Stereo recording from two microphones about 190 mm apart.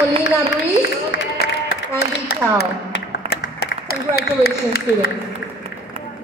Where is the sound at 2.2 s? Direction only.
60° left (ahead or behind).